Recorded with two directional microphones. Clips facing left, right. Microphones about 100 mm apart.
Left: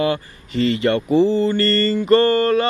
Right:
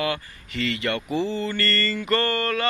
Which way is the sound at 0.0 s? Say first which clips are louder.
Left 7 dB; 30° left (ahead or behind).